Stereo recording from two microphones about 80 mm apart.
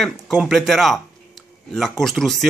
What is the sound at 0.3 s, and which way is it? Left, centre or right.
Speech, centre.